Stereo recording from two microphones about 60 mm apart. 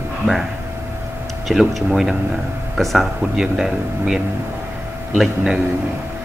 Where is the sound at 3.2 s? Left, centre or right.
Centre.